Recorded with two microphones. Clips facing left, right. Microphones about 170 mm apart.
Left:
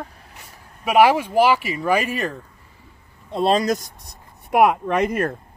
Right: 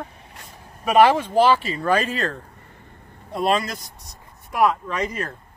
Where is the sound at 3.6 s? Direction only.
45° left (ahead or behind).